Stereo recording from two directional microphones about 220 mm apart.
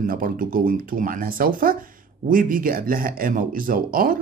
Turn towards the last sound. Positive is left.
turn(degrees=-40)  # may be behind; listen again after turning